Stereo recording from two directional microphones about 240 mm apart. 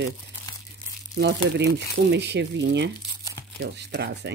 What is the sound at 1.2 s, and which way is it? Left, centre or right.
Speech, right.